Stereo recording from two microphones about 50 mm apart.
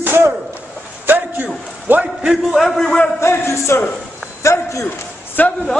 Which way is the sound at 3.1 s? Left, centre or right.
Left.